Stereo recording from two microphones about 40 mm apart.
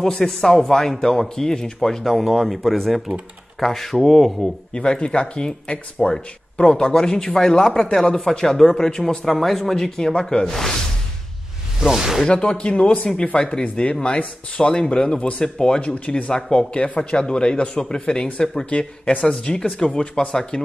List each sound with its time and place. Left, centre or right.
0.0 s speech: centre
4.7 s speech: left
11.8 s speech: centre
12.3 s speech: left
16.5 s speech: left
18.7 s speech: left